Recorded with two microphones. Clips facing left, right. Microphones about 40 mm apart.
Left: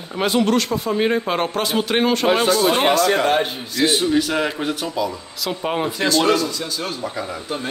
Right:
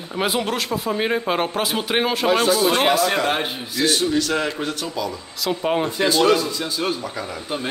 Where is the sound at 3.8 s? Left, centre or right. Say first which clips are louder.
Left 2 dB; centre.